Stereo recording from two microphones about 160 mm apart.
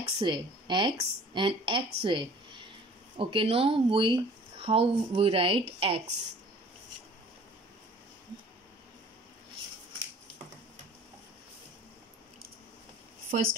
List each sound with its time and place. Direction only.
0.0 s a woman's voice: 30° right (ahead or behind)
13.3 s speech: 60° right (ahead or behind)